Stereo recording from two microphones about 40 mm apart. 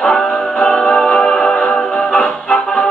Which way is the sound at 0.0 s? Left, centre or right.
Centre.